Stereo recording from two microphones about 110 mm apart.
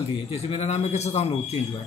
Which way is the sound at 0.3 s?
70° left (ahead or behind).